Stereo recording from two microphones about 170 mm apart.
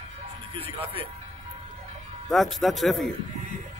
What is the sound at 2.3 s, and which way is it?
Speech, centre (ahead or behind).